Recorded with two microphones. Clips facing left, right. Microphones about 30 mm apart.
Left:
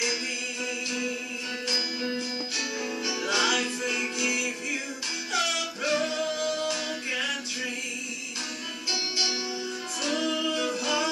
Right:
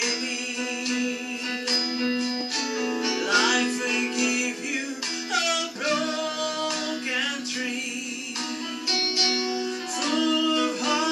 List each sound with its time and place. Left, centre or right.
0.8 s music: right
2.8 s music: right
5.3 s music: right
8.9 s music: right